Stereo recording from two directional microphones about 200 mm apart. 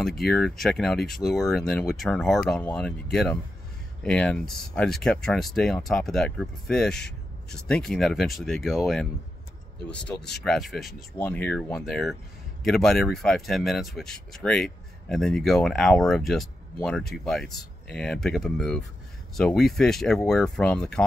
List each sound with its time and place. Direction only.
0.2 s speech: centre (ahead or behind)